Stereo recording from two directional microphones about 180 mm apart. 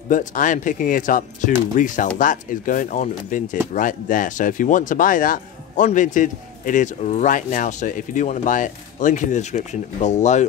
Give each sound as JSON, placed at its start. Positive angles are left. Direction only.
{"t": 0.1, "sound": "speech", "side_deg": 45}